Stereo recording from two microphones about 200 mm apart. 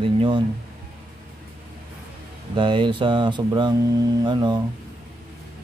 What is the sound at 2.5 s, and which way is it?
A man's voice, 25° right (ahead or behind).